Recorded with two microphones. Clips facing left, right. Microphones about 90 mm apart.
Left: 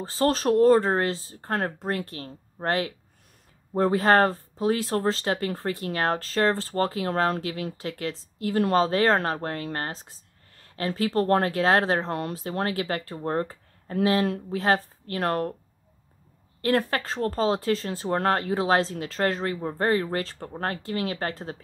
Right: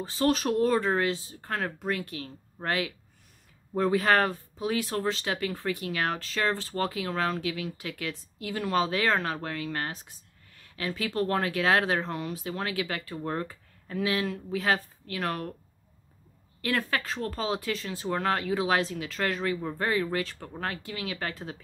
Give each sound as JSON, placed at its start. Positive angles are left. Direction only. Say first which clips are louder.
{"t": 0.0, "sound": "speech", "louder": "left 3 dB", "side_deg": 35}
{"t": 12.1, "sound": "speech", "louder": "left 4 dB", "side_deg": 45}
{"t": 16.6, "sound": "speech", "louder": "left 5 dB", "side_deg": 35}